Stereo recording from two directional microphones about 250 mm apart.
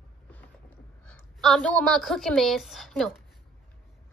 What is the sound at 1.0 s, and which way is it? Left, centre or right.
A woman's voice, centre.